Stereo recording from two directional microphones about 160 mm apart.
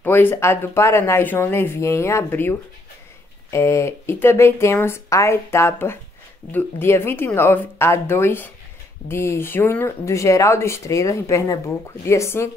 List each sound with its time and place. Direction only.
0.0 s speech: 15° left (ahead or behind)